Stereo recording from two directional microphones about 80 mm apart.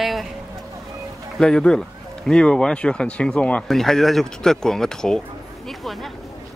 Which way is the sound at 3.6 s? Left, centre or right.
Centre.